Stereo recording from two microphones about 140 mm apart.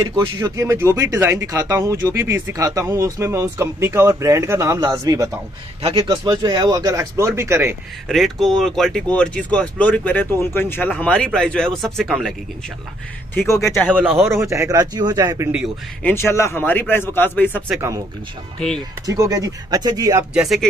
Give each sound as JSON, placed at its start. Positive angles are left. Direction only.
{"t": 0.1, "sound": "speech", "side_deg": -20}
{"t": 8.1, "sound": "speech", "side_deg": 0}
{"t": 13.7, "sound": "speech", "side_deg": 0}
{"t": 14.1, "sound": "speech", "side_deg": -20}
{"t": 16.0, "sound": "speech", "side_deg": 15}
{"t": 17.6, "sound": "speech", "side_deg": -20}
{"t": 19.0, "sound": "speech", "side_deg": -25}
{"t": 20.3, "sound": "speech", "side_deg": 0}